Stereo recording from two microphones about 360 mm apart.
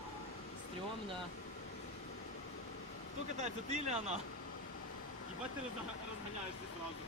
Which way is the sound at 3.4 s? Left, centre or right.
Centre.